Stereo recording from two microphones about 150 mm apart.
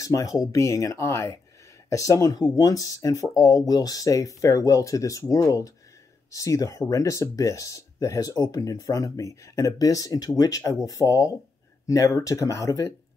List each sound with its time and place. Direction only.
0.0 s speech: 20° left (ahead or behind)